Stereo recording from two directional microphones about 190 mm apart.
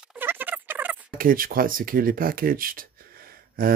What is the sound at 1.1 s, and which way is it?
Speech, 45° right (ahead or behind).